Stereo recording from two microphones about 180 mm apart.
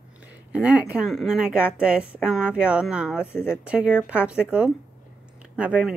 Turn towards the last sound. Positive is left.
turn(degrees=-5)  # may be behind; listen again after turning